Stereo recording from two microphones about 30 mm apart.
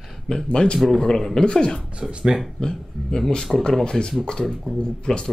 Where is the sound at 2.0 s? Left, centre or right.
Right.